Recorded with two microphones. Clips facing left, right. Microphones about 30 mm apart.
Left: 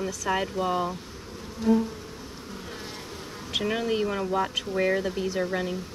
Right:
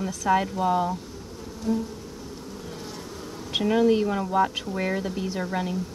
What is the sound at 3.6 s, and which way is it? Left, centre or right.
Speech, centre.